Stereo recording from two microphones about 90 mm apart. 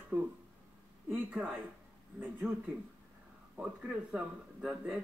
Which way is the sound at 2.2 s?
15° right (ahead or behind).